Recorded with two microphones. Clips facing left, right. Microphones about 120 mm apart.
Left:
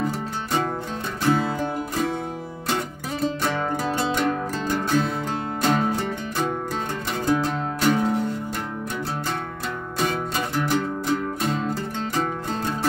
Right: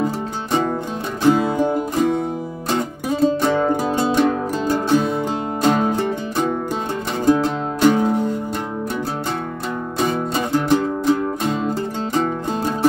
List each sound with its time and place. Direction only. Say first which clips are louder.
1.2 s music: right 7 dB; 15° right (ahead or behind)
4.7 s music: right 5 dB; 15° right (ahead or behind)
9.9 s music: right 4 dB; 25° right (ahead or behind)